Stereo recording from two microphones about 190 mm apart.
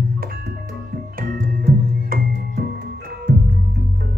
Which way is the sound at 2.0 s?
50° right (ahead or behind).